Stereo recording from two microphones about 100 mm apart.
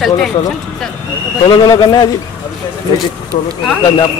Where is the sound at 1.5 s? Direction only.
45° left (ahead or behind).